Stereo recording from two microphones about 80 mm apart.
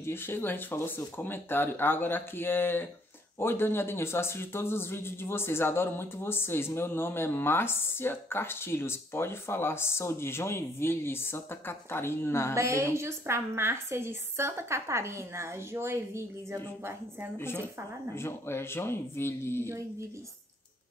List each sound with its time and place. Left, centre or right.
0.0 s speech: left
12.5 s a woman's voice: right
18.1 s speech: left